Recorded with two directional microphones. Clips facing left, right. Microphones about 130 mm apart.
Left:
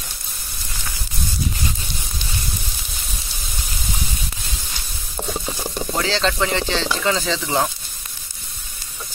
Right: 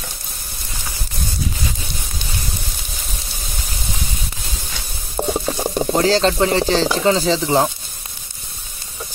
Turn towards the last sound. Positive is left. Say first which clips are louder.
# right 5 dB
turn(degrees=-30)  # may be behind; listen again after turning